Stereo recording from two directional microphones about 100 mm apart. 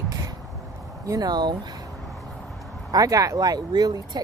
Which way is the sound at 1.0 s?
40° right (ahead or behind).